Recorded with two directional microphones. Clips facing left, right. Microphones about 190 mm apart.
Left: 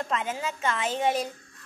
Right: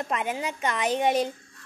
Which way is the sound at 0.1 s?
15° right (ahead or behind).